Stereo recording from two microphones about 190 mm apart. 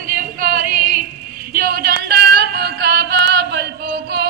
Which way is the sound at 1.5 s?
50° right (ahead or behind).